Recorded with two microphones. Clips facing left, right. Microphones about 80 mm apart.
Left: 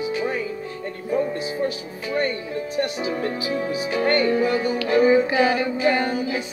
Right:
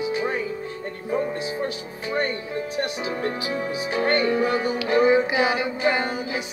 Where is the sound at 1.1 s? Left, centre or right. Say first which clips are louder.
Left 2 dB; right.